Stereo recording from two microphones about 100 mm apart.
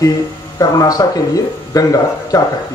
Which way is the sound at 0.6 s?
35° left (ahead or behind).